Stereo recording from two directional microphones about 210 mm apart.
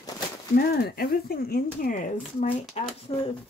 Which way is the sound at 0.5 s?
50° left (ahead or behind).